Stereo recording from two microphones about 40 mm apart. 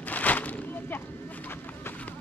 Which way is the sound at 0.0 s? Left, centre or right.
Left.